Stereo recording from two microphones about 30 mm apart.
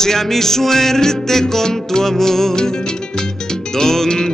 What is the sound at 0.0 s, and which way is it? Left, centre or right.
Music, centre.